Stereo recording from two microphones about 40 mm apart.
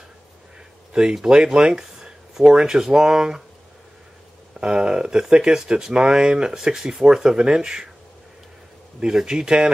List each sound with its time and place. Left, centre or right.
1.1 s speech: centre
4.6 s speech: right
9.0 s speech: centre